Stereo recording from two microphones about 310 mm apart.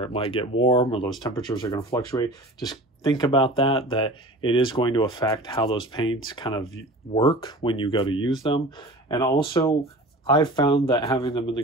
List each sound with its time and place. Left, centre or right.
0.0 s speech: centre